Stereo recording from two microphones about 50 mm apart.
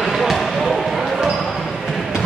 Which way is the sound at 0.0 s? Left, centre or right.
Centre.